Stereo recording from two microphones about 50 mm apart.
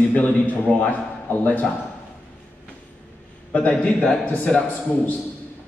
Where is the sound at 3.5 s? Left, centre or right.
Left.